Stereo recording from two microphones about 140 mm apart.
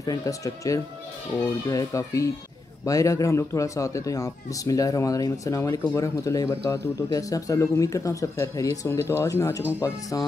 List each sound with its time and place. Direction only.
0.0 s speech: 25° left (ahead or behind)